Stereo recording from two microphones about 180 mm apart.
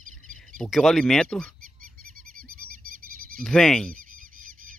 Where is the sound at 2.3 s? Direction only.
55° right (ahead or behind).